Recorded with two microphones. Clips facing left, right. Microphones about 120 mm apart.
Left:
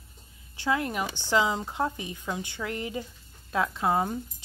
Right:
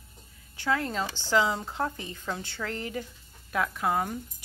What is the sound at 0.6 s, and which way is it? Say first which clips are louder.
A woman's voice: left 1 dB; 20° left (ahead or behind).